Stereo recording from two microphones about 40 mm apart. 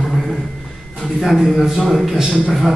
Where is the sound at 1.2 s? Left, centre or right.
Centre.